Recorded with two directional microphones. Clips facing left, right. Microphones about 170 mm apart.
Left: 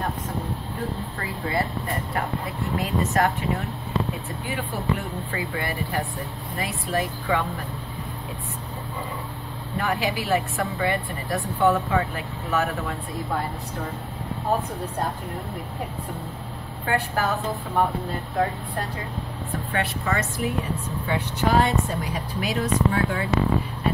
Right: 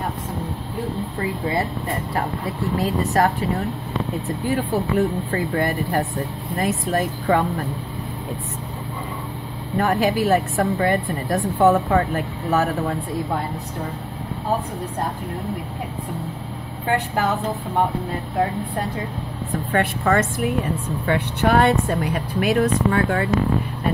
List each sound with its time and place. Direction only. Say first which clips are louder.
2.8 s speech: right 3 dB; 35° right (ahead or behind)
4.5 s a woman's voice: right 6 dB; 40° right (ahead or behind)
9.8 s a woman's voice: right 7 dB; 45° right (ahead or behind)
16.9 s speech: right 3 dB; 20° right (ahead or behind)
19.7 s a woman's voice: right 7 dB; 50° right (ahead or behind)